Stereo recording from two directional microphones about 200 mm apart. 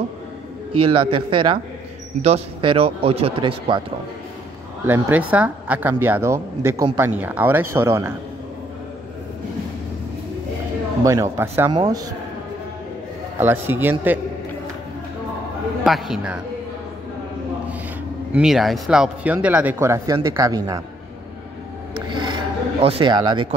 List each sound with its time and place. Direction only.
0.8 s speech: 25° right (ahead or behind)
4.8 s a woman's voice: 10° right (ahead or behind)
11.1 s a woman's voice: 15° right (ahead or behind)
13.4 s a woman's voice: 10° right (ahead or behind)
15.8 s speech: centre (ahead or behind)
18.3 s a woman's voice: centre (ahead or behind); by 20.8 s 20° right (ahead or behind)
21.9 s a sound: 25° right (ahead or behind)